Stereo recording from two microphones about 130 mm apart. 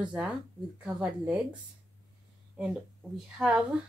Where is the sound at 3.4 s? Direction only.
5° right (ahead or behind).